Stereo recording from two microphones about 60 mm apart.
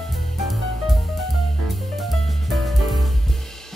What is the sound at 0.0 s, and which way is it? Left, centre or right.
Music, centre.